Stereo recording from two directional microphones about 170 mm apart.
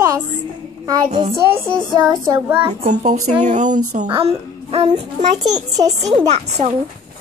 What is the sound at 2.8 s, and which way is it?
A woman's voice, 45° right (ahead or behind).